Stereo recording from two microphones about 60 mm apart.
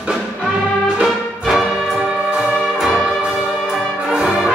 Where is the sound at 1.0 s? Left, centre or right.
Centre.